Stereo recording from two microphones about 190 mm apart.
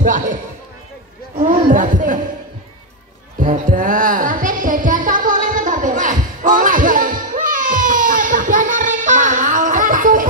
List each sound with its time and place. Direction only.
0.0 s speech: 40° right (ahead or behind)
1.5 s a sound: 45° right (ahead or behind)
3.3 s music: 40° right (ahead or behind)